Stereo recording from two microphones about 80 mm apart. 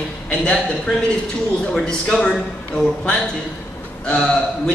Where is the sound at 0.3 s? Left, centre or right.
Centre.